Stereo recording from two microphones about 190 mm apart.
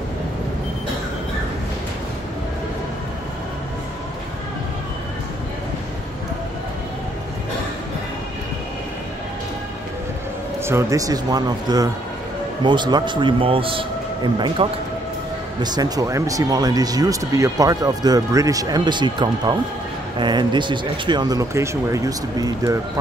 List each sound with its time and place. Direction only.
10.6 s speech: 15° right (ahead or behind)